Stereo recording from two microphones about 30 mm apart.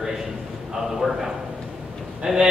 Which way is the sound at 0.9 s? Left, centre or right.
Centre.